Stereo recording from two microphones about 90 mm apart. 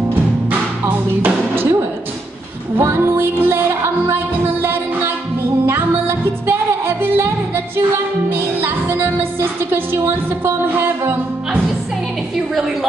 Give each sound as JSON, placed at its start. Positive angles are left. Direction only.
{"t": 0.5, "sound": "music", "side_deg": -20}
{"t": 2.8, "sound": "music", "side_deg": -25}